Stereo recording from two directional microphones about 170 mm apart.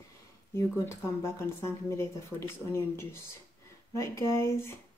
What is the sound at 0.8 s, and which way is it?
Speech, 15° left (ahead or behind).